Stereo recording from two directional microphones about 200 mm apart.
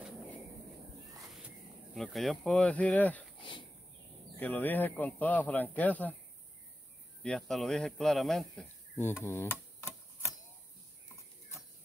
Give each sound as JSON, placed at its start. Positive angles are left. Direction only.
{"t": 2.0, "sound": "speech", "side_deg": 0}
{"t": 4.4, "sound": "speech", "side_deg": 10}
{"t": 7.2, "sound": "speech", "side_deg": 0}